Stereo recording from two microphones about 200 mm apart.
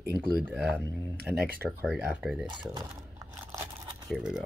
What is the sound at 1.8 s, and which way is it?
Speech, 5° right (ahead or behind).